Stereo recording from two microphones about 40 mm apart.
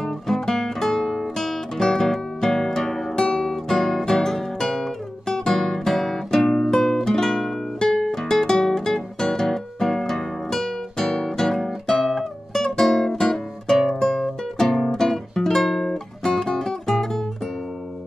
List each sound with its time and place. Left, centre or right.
0.0 s music: centre
3.2 s music: centre
3.5 s guitar: centre
14.6 s music: centre